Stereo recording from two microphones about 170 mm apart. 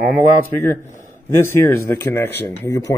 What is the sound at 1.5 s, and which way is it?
Speech, 15° left (ahead or behind).